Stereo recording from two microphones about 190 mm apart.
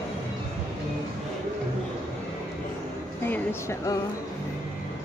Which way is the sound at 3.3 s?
10° left (ahead or behind).